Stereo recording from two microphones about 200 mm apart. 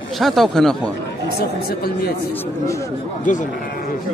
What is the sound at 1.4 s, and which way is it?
Speech, 50° left (ahead or behind).